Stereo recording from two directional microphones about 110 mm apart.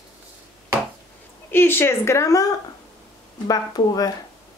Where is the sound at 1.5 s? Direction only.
20° left (ahead or behind).